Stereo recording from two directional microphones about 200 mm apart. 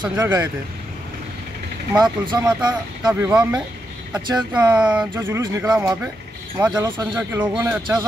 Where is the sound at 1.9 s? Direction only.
20° right (ahead or behind).